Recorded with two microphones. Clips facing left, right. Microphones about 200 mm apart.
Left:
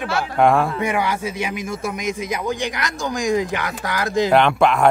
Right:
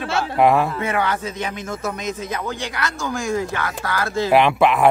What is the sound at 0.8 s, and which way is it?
A man's voice, 15° left (ahead or behind).